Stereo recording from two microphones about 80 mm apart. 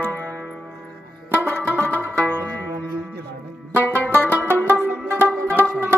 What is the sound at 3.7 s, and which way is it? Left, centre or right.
Music, left.